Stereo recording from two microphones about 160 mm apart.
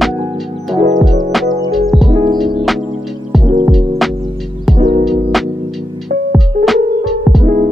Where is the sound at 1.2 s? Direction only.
Centre (ahead or behind).